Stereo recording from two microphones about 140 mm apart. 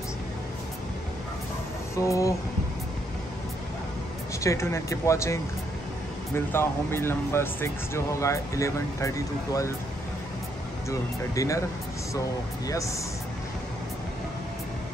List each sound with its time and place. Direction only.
2.0 s speech: 20° left (ahead or behind)
4.4 s speech: 20° left (ahead or behind)
10.9 s speech: 20° left (ahead or behind)
12.6 s speech: 25° left (ahead or behind)